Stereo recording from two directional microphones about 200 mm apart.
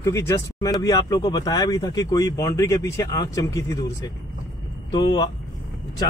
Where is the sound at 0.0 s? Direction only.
15° left (ahead or behind).